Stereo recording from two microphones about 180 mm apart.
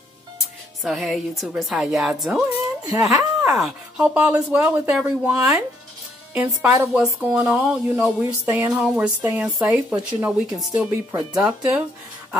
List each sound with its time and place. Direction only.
0.8 s speech: centre (ahead or behind)
2.8 s speech: 20° right (ahead or behind)
3.1 s speech: centre (ahead or behind)